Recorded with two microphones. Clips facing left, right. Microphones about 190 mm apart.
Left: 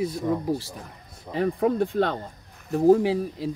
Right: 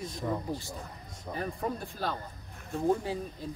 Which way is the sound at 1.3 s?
80° left.